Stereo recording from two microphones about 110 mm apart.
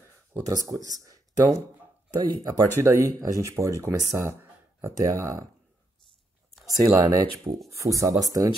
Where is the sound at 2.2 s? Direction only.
35° right (ahead or behind).